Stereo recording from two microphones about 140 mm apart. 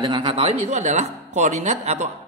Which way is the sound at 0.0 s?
35° right (ahead or behind).